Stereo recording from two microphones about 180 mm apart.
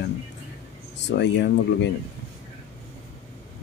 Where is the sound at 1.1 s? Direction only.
70° left (ahead or behind).